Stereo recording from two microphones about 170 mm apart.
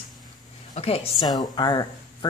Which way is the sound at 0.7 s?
35° left (ahead or behind).